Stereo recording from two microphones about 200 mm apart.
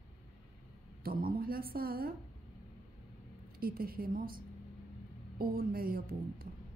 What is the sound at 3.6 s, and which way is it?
Speech, 50° right (ahead or behind).